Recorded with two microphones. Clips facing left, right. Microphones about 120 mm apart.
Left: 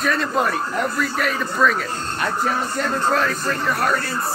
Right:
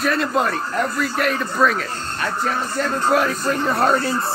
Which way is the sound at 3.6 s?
25° right (ahead or behind).